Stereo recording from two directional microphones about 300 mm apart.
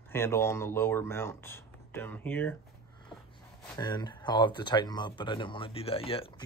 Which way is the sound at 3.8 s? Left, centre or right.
Centre.